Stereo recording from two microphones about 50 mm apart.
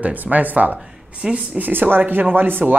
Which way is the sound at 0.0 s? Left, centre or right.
Right.